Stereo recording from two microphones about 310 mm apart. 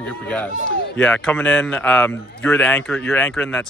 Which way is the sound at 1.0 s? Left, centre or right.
Centre.